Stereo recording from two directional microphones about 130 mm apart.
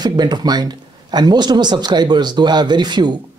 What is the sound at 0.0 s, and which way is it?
Speech, 30° right (ahead or behind).